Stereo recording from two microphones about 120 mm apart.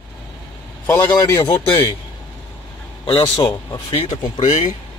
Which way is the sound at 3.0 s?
45° left (ahead or behind).